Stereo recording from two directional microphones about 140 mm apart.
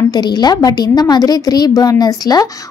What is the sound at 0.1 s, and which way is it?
A woman's voice, 30° left (ahead or behind).